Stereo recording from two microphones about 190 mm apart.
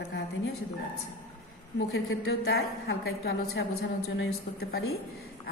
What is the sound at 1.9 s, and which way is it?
A woman's voice, 65° left (ahead or behind).